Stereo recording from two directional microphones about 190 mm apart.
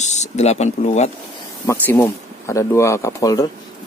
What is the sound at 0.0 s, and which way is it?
Speech, 35° left (ahead or behind).